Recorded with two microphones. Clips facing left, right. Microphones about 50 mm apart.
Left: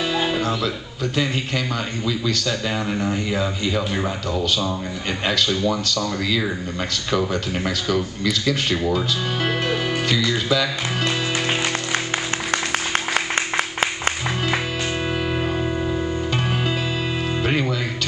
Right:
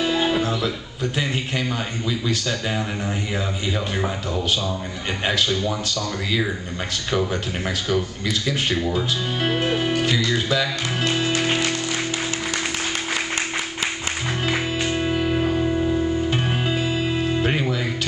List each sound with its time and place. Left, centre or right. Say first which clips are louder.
0.1 s music: right 1 dB; centre
2.7 s speech: left 3 dB; centre
7.1 s speech: left 1 dB; centre
8.9 s music: left 1 dB; centre
10.0 s speech: left 1 dB; centre
13.1 s music: left 5 dB; left
15.3 s music: right 2 dB; centre
17.4 s music: even; centre